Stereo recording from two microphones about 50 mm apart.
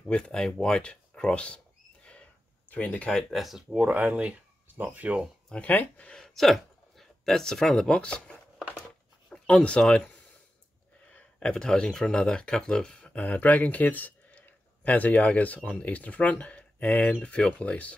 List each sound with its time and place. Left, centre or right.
0.1 s speech: centre
2.7 s speech: left
3.3 s speech: centre
3.7 s speech: right
4.7 s speech: right
5.5 s speech: left
6.1 s speech: centre
8.0 s speech: left
11.1 s a sound: left
11.5 s speech: centre
13.1 s speech: left